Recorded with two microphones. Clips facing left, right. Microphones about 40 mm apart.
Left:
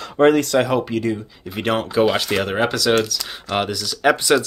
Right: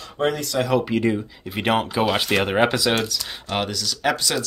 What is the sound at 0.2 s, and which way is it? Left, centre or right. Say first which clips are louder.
Speech: left 9 dB; left.